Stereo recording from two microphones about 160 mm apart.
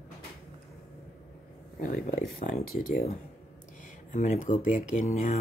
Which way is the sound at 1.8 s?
60° left (ahead or behind).